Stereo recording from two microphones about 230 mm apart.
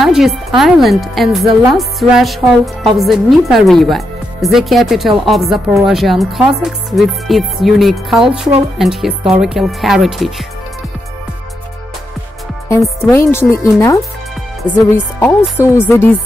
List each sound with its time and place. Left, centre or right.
0.0 s speech: centre
8.3 s speech: right
8.7 s speech: centre
13.1 s speech: centre